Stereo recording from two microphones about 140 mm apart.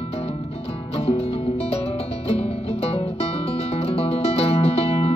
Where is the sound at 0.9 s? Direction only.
45° left (ahead or behind).